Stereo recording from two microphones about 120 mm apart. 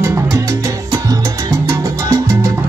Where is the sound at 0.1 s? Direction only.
25° right (ahead or behind).